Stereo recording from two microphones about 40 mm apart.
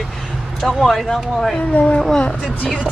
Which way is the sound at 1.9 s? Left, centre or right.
Centre.